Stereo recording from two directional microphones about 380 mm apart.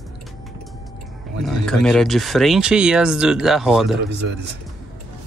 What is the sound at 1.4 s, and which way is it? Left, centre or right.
Speech, centre.